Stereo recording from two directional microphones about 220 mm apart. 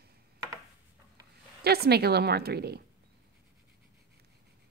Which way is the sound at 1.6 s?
45° right (ahead or behind).